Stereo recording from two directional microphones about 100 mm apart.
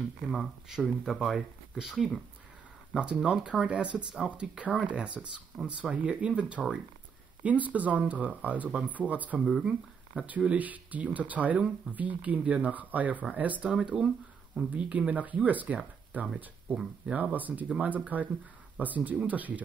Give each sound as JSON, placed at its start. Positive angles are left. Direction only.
{"t": 0.3, "sound": "speech", "side_deg": -5}